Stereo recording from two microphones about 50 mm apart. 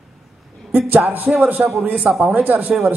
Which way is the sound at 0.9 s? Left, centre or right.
Right.